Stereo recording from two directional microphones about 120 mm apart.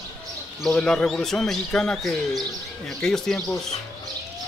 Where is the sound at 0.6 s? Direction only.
5° left (ahead or behind).